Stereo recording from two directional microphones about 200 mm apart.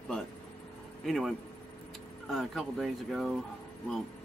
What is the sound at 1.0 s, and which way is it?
Speech, centre (ahead or behind).